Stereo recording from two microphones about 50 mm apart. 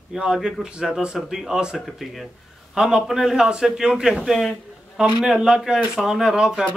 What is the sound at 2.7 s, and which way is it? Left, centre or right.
Speech, centre.